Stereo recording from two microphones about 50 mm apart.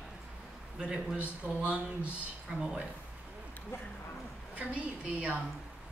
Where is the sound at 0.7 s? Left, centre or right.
Right.